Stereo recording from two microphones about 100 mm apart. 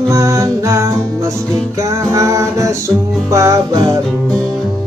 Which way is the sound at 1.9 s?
30° right (ahead or behind).